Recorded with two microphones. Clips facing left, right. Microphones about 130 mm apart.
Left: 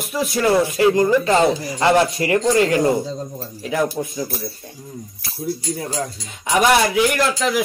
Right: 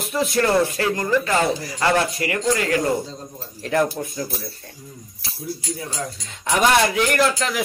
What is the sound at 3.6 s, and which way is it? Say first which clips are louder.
Speech: right 1 dB; 5° left (ahead or behind).